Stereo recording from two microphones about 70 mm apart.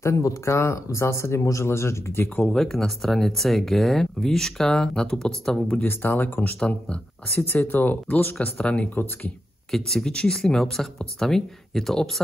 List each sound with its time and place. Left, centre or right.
0.0 s speech: left
2.2 s speech: left
2.5 s speech: centre
5.9 s speech: left
6.6 s speech: centre
7.4 s speech: left
9.7 s speech: centre